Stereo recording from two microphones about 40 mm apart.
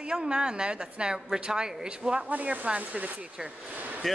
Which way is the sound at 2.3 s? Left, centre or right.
Right.